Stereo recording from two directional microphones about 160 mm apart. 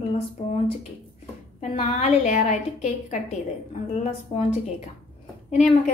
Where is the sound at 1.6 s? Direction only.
45° left (ahead or behind).